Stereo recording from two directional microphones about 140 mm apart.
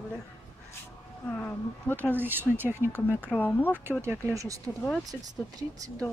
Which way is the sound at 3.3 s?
10° left (ahead or behind).